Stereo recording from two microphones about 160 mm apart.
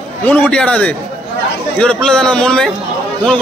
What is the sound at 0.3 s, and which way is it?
A man's voice, 5° left (ahead or behind).